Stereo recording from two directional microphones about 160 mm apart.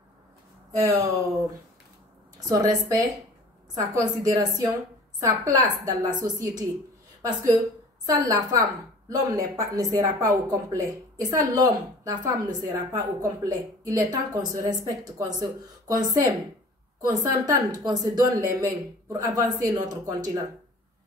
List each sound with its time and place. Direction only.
0.7 s a woman's voice: 20° right (ahead or behind)